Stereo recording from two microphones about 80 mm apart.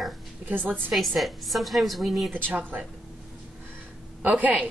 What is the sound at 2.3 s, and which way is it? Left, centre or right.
Speech, right.